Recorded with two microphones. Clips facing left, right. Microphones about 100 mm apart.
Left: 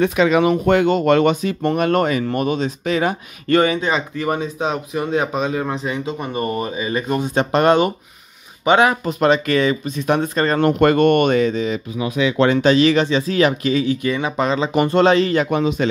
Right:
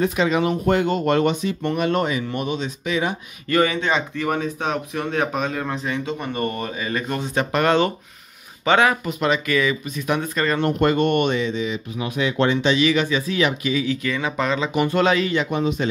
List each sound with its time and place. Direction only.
0.0 s speech: 85° left
1.6 s speech: 45° left (ahead or behind)
3.5 s speech: 25° left (ahead or behind)
3.8 s speech: 5° left (ahead or behind)
7.3 s speech: 25° left (ahead or behind)
9.0 s speech: 35° left (ahead or behind)
10.6 s speech: 70° left (ahead or behind); by 11.8 s 45° left (ahead or behind)
12.4 s speech: 55° left (ahead or behind)
12.7 s speech: 35° left (ahead or behind)
13.8 s speech: 25° left (ahead or behind)
15.5 s speech: 80° left